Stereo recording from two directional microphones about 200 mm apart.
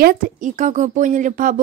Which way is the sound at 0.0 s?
45° right (ahead or behind).